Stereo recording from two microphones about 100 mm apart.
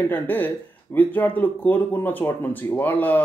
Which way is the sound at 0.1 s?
20° left (ahead or behind).